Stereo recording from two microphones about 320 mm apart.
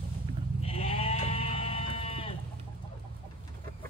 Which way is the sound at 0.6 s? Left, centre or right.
Centre.